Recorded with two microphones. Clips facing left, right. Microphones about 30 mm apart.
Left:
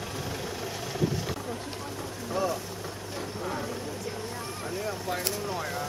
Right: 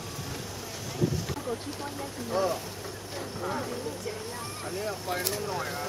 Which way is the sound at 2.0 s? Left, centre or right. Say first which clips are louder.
Right 1 dB; centre.